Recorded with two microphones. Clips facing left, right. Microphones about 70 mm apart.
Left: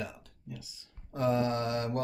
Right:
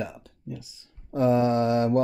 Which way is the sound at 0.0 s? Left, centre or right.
Right.